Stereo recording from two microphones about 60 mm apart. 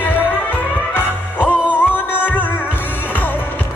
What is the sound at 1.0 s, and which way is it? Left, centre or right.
Music, left.